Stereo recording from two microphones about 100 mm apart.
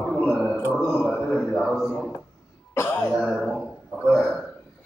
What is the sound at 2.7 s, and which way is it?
Cough, 30° left (ahead or behind).